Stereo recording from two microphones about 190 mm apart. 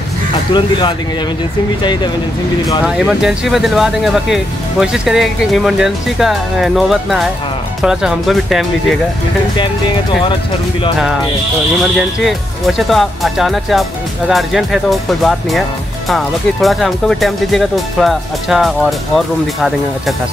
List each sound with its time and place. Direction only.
0.5 s speech: 25° left (ahead or behind)
2.8 s speech: 5° right (ahead or behind)
11.8 s speech: centre (ahead or behind)